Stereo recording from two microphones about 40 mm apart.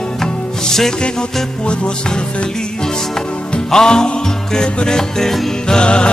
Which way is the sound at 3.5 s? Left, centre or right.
Centre.